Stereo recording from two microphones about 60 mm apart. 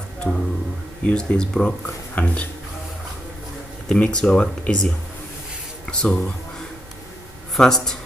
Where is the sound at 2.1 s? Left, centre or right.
Left.